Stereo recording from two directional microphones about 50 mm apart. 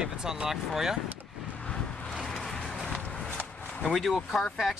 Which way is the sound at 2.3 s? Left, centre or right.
Centre.